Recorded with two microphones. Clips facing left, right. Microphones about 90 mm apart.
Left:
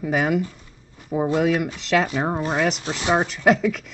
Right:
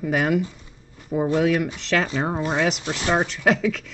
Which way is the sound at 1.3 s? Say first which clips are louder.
Even; 5° left (ahead or behind).